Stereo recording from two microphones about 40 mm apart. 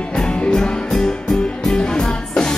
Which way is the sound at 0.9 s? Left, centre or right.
Centre.